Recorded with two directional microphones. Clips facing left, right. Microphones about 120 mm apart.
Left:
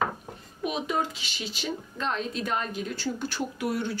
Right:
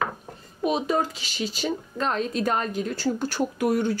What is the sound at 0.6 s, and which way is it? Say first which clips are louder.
Speech: right 5 dB; 35° right (ahead or behind).